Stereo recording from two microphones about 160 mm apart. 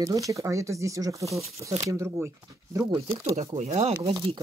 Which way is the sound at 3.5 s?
45° right (ahead or behind).